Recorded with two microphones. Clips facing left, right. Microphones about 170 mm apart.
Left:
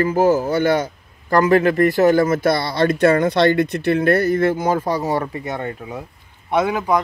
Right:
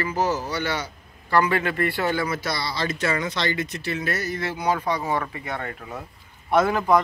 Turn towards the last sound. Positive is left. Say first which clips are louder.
# left 1 dB
turn(degrees=10)  # may be behind; listen again after turning